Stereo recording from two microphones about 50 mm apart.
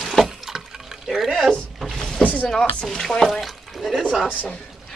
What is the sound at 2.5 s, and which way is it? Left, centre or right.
Speech, centre.